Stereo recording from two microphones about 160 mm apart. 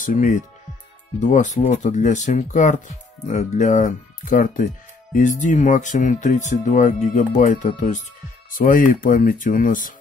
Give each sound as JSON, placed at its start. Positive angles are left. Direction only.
{"t": 0.0, "sound": "speech", "side_deg": 55}